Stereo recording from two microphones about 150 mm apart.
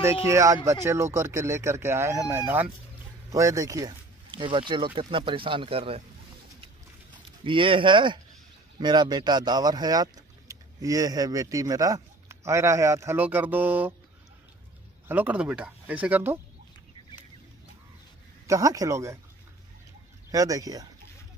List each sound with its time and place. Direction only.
0.0 s speech: 20° right (ahead or behind); by 6.0 s 40° right (ahead or behind)
7.4 s speech: 35° right (ahead or behind); by 13.9 s 10° right (ahead or behind)
15.0 s speech: 10° right (ahead or behind)
18.5 s speech: 20° right (ahead or behind)
20.2 s speech: 25° right (ahead or behind)